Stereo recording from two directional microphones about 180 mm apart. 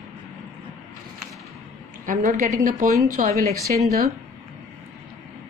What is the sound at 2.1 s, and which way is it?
A woman's voice, 45° right (ahead or behind).